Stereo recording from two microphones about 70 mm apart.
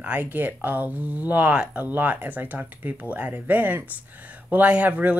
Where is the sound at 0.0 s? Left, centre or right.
Right.